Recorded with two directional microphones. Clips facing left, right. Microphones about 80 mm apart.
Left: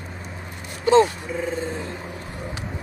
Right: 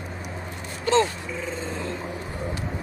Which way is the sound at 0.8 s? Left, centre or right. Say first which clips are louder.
Left 5 dB; centre.